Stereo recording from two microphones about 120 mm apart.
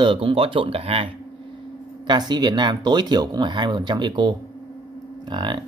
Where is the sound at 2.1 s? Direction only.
40° right (ahead or behind).